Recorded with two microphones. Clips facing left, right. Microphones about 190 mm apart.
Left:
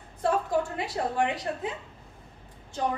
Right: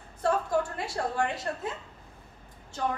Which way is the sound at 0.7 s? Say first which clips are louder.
Left 2 dB; 20° left (ahead or behind).